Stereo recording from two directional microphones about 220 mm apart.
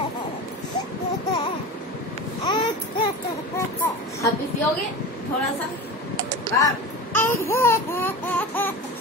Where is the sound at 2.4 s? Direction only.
20° left (ahead or behind).